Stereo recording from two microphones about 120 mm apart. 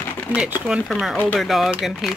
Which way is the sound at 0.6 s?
10° right (ahead or behind).